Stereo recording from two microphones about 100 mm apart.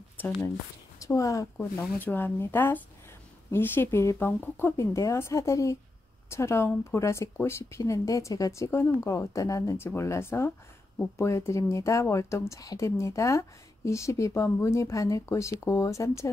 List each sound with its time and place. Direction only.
1.0 s speech: 35° left (ahead or behind)
1.6 s speech: 20° left (ahead or behind)